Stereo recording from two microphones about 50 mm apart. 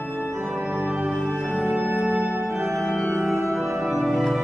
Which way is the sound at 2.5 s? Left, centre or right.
Centre.